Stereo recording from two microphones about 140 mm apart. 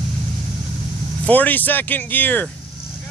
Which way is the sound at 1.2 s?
10° left (ahead or behind).